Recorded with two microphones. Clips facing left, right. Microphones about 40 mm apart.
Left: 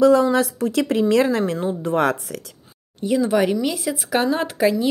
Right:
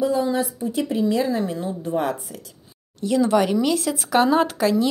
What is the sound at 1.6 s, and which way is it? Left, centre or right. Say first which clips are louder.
Speech: left 4 dB; left.